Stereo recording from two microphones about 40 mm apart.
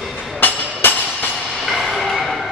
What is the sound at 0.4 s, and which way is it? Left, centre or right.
Music, left.